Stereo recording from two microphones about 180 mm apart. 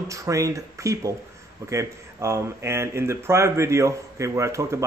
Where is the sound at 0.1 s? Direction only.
15° right (ahead or behind).